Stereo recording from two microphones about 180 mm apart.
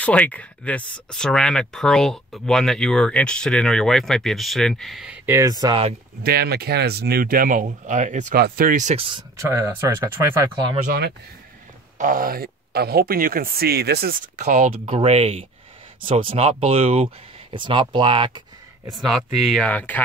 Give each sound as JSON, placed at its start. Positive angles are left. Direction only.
{"t": 0.0, "sound": "speech", "side_deg": 10}
{"t": 6.2, "sound": "speech", "side_deg": -60}
{"t": 8.4, "sound": "speech", "side_deg": -55}
{"t": 9.5, "sound": "speech", "side_deg": -15}
{"t": 10.9, "sound": "speech", "side_deg": -65}
{"t": 12.0, "sound": "speech", "side_deg": -50}
{"t": 14.3, "sound": "speech", "side_deg": -40}
{"t": 18.9, "sound": "speech", "side_deg": 0}